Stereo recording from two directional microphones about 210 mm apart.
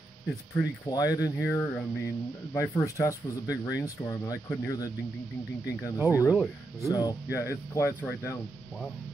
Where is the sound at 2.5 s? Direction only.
15° left (ahead or behind).